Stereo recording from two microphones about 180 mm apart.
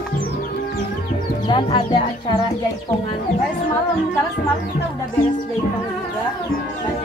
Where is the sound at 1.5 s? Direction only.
25° left (ahead or behind).